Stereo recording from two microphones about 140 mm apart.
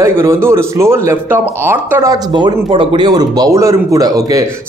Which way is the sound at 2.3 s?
35° right (ahead or behind).